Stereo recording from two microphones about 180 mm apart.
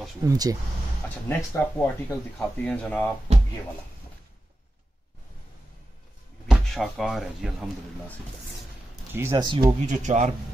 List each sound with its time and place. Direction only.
0.2 s speech: 20° right (ahead or behind)
1.0 s speech: 15° left (ahead or behind)
6.4 s speech: centre (ahead or behind)
9.1 s speech: 15° right (ahead or behind)
9.4 s speech: 25° right (ahead or behind)
9.8 s speech: 40° right (ahead or behind)